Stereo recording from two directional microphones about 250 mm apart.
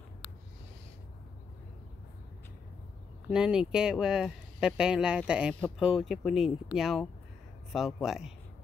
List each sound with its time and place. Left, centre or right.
0.2 s owl: left
3.3 s speech: centre